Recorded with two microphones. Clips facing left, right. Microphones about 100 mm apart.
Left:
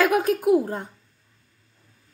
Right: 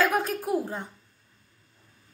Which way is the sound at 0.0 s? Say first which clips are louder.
Left 5 dB; 65° left (ahead or behind).